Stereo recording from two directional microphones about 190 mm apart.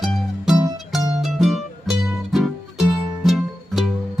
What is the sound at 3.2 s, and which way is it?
Music, centre (ahead or behind).